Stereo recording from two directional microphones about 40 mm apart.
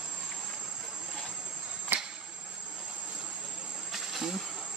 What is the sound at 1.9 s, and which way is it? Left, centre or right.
Cricket, right.